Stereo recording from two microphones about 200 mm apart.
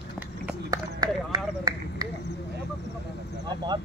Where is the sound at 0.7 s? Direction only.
20° right (ahead or behind).